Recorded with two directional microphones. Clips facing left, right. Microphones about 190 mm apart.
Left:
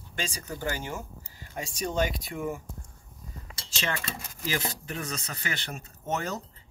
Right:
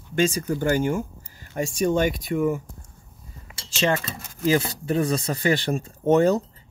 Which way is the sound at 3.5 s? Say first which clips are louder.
Right 1 dB; 5° right (ahead or behind).